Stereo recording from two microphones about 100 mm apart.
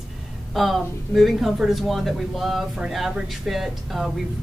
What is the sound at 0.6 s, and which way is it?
Speech, centre (ahead or behind).